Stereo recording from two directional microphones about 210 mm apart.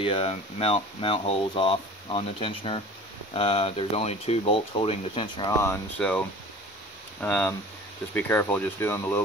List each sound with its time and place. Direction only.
0.0 s speech: 25° left (ahead or behind); by 9.2 s 10° left (ahead or behind)